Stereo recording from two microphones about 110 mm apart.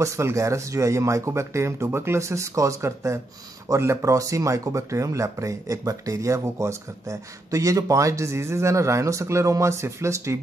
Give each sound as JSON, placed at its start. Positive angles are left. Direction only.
{"t": 0.0, "sound": "speech", "side_deg": -25}